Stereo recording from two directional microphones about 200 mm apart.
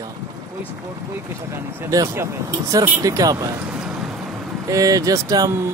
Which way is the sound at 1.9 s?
15° right (ahead or behind).